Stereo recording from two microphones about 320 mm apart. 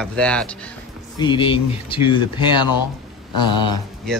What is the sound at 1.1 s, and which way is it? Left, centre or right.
Speech, centre.